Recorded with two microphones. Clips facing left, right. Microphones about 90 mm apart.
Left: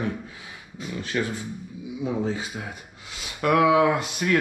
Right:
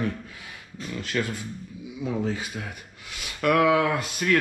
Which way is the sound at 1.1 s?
15° left (ahead or behind).